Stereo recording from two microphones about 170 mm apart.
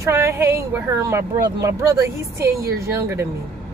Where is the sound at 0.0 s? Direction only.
15° right (ahead or behind).